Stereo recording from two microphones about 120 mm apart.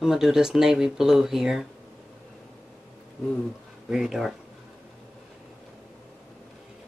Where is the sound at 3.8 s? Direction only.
5° right (ahead or behind).